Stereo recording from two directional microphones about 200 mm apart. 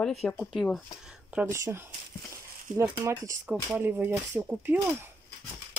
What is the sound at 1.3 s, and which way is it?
Speech, 10° right (ahead or behind).